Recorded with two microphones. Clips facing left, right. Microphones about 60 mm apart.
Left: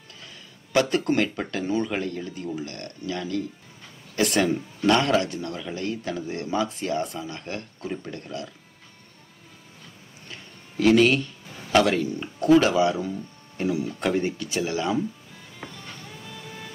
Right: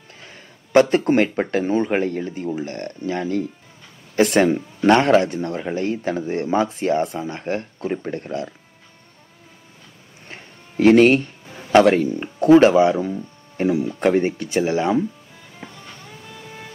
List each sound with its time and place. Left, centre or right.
0.7 s speech: right
10.2 s music: right
11.4 s a sound: right
12.2 s speech: right
15.8 s vehicle: centre